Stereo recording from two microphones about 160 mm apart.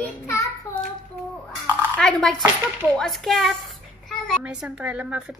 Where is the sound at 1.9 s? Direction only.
5° left (ahead or behind).